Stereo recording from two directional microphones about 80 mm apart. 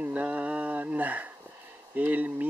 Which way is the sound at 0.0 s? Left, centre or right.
Centre.